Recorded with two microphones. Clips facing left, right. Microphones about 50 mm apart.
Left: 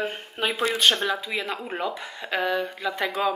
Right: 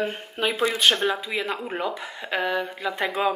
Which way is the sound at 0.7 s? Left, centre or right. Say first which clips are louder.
Right 1 dB; centre.